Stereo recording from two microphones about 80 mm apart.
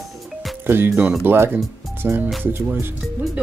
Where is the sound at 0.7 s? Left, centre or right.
Right.